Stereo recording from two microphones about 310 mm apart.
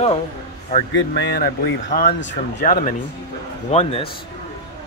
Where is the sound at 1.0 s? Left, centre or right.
Left.